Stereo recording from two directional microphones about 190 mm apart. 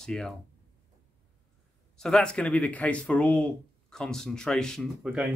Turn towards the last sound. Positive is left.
turn(degrees=-5)  # may be behind; listen again after turning